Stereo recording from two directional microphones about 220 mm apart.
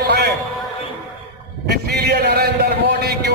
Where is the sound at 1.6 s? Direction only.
45° right (ahead or behind).